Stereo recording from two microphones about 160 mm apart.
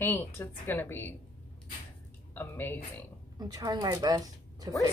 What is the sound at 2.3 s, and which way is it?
Speech, 15° left (ahead or behind).